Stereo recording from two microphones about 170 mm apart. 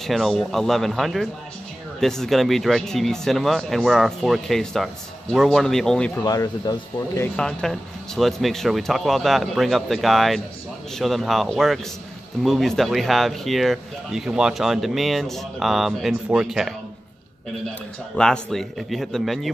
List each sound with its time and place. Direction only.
0.0 s speech: centre (ahead or behind)
6.2 s speech: 20° left (ahead or behind)
7.3 s speech: 5° left (ahead or behind)
18.1 s speech: 5° left (ahead or behind)